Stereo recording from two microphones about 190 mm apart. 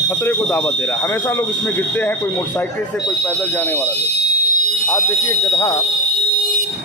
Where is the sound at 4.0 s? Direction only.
60° left (ahead or behind).